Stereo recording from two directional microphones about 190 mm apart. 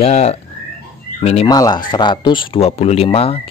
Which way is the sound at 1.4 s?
20° left (ahead or behind).